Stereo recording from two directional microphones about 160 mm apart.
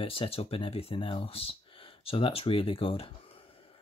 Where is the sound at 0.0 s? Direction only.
35° left (ahead or behind).